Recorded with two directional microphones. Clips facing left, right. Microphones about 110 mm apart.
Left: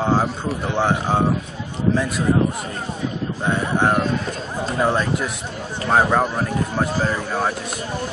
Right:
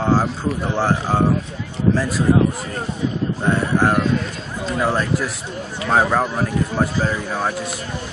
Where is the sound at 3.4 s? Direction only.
Centre (ahead or behind).